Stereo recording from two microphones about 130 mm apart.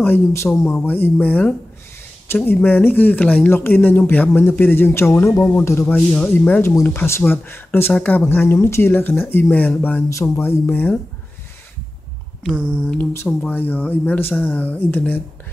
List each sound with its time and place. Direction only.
0.0 s speech: 20° left (ahead or behind)
5.9 s speech: 10° left (ahead or behind)
13.1 s speech: 15° left (ahead or behind)